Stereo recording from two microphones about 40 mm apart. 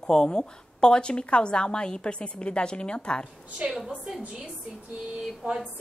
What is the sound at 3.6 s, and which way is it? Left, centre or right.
Speech, right.